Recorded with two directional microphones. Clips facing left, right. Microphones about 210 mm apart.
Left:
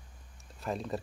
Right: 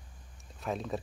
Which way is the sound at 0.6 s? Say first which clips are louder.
Even; centre (ahead or behind).